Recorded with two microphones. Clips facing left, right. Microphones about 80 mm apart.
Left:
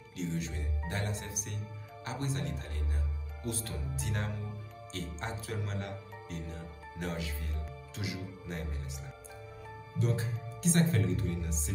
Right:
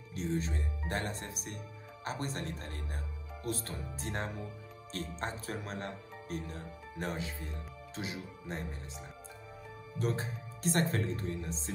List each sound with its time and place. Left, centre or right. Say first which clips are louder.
0.1 s speech: right 2 dB; right
4.9 s speech: right 1 dB; right
9.9 s speech: left 1 dB; right